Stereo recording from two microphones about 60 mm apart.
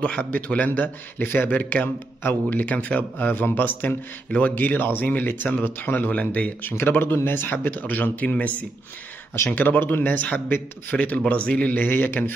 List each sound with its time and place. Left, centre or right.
0.0 s a man's voice: centre
6.8 s a man's voice: left